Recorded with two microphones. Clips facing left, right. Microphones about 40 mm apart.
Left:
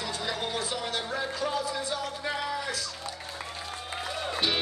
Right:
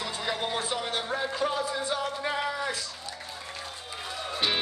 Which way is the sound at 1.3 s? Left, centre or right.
Right.